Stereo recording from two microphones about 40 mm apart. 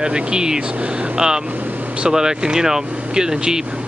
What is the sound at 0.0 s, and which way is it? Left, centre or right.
Speech, right.